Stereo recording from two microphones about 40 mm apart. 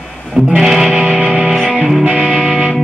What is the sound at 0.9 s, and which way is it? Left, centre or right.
Music, right.